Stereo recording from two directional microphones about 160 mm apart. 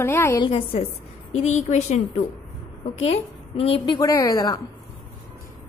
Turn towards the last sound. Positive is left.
turn(degrees=20)  # may be behind; listen again after turning